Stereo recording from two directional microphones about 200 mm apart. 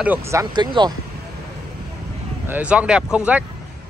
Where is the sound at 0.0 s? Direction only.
10° right (ahead or behind).